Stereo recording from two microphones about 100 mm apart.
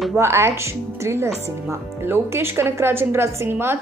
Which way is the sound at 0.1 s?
25° right (ahead or behind).